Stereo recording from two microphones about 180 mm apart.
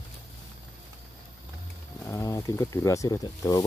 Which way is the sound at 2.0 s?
15° left (ahead or behind).